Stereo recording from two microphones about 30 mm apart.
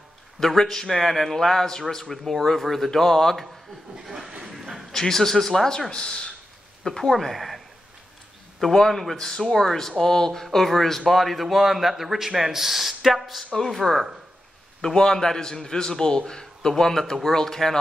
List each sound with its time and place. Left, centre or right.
0.5 s a man's voice: centre
2.2 s a man's voice: centre
4.0 s a sound: centre
4.9 s a man's voice: centre
5.7 s a man's voice: left
6.8 s speech: centre
8.6 s a man's voice: centre
13.1 s speech: centre
14.8 s a man's voice: left